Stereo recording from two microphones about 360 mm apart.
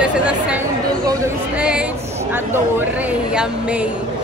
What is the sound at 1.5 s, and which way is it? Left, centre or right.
Speech, centre.